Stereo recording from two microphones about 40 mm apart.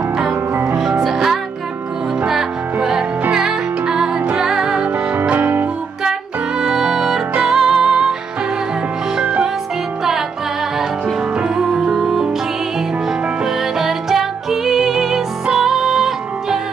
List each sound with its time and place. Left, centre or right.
1.0 s music: centre
5.3 s music: right
6.6 s music: centre
9.1 s music: centre
11.3 s music: right
13.7 s music: centre